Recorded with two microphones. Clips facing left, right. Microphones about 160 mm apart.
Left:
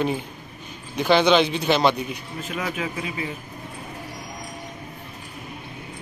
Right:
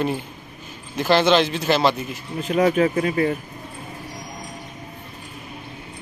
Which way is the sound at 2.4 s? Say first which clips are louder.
Right 11 dB; 45° right (ahead or behind).